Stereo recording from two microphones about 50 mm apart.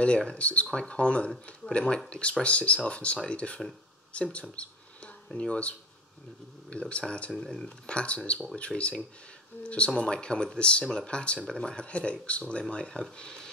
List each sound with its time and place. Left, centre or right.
0.0 s speech: left
4.1 s a sound: left
5.3 s speech: centre